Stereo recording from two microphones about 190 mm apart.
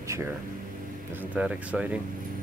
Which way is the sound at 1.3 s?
5° right (ahead or behind).